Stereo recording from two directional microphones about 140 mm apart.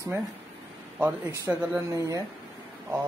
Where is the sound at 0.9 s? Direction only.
10° right (ahead or behind).